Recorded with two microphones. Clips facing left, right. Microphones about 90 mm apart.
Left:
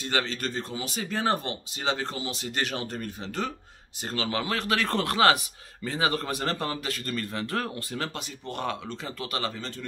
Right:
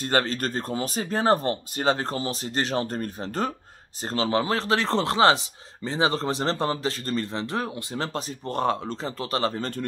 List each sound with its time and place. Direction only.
0.0 s a man's voice: 45° right (ahead or behind); by 8.0 s 20° right (ahead or behind)
8.0 s speech: 35° right (ahead or behind)